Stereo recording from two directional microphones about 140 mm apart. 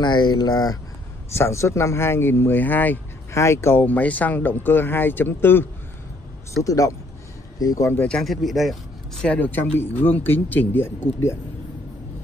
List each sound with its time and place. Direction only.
0.0 s speech: 30° left (ahead or behind); by 8.2 s 15° left (ahead or behind)
8.2 s speech: centre (ahead or behind); by 11.3 s 15° left (ahead or behind)